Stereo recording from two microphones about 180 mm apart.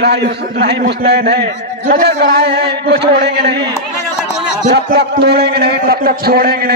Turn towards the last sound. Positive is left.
turn(degrees=-60)  # may be behind; listen again after turning